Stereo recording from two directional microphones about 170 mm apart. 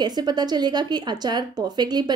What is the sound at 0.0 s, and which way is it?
Speech, 25° right (ahead or behind).